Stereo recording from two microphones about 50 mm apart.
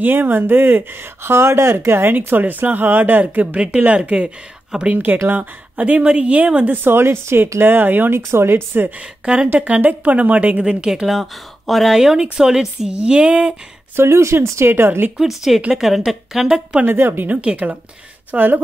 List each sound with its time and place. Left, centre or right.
0.0 s speech: right
3.5 s speech: right
7.6 s speech: right
8.3 s speech: right
9.2 s speech: right
10.6 s speech: centre
11.1 s speech: centre; by 13.6 s right
13.9 s speech: right
15.1 s speech: centre
16.8 s speech: right
17.3 s speech: right
18.3 s speech: right